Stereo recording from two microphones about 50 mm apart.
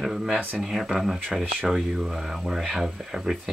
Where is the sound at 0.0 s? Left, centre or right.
Centre.